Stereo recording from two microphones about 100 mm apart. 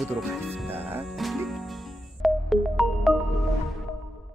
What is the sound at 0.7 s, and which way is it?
Speech, 20° right (ahead or behind).